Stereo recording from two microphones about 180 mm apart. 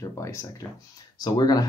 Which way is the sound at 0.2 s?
15° left (ahead or behind).